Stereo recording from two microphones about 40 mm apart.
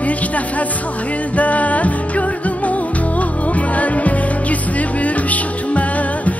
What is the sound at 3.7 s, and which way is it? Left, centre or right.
Music, left.